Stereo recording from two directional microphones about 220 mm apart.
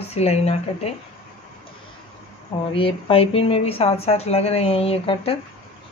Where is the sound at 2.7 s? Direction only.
25° left (ahead or behind).